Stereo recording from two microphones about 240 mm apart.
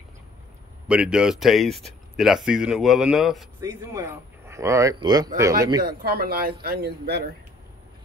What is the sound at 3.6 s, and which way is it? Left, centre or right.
Speech, centre.